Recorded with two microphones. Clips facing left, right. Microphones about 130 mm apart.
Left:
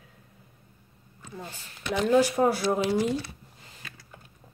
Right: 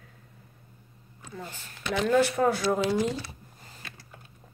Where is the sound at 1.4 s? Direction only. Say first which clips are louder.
Right 1 dB; 15° left (ahead or behind).